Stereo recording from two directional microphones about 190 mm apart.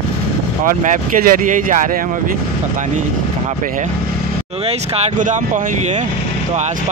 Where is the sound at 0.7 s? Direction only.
45° right (ahead or behind).